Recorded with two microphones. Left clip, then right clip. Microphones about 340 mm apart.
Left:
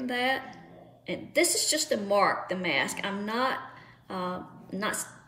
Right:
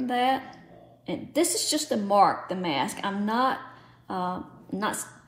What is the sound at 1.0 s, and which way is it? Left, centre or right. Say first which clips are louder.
Speech: even; right.